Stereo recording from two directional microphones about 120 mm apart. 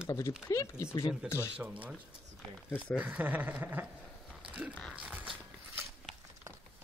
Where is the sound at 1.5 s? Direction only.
10° right (ahead or behind).